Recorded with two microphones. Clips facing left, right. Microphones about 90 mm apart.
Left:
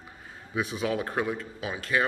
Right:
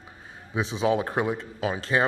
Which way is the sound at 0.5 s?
25° right (ahead or behind).